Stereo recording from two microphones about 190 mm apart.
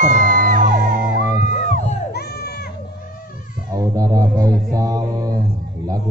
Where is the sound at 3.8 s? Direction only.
20° right (ahead or behind).